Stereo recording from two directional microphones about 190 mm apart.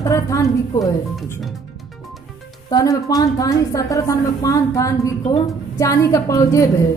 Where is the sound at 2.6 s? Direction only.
20° left (ahead or behind).